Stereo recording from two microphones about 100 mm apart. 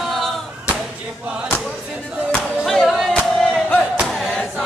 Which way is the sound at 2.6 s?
Centre (ahead or behind).